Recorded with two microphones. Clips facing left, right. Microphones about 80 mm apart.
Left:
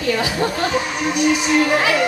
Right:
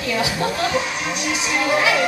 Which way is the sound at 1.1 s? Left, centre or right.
Centre.